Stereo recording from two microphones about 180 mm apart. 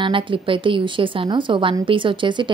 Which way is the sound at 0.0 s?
30° right (ahead or behind).